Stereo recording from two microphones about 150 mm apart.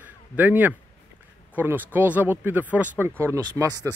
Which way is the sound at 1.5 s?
10° right (ahead or behind).